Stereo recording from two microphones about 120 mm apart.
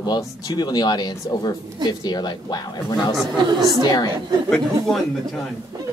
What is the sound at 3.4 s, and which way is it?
Speech, 35° right (ahead or behind).